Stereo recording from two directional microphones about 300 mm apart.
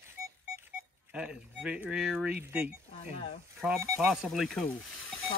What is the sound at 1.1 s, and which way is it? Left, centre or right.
Speech, centre.